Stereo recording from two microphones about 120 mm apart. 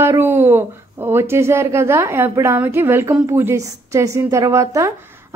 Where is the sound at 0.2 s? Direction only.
20° right (ahead or behind).